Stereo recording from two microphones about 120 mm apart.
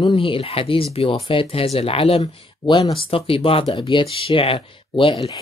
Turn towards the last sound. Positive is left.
turn(degrees=45)  # may be behind; listen again after turning